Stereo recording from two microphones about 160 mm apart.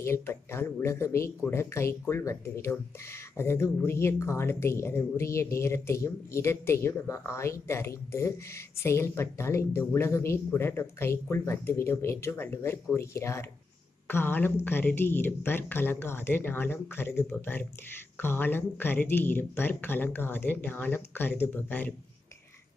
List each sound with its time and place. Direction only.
0.0 s speech: 15° left (ahead or behind)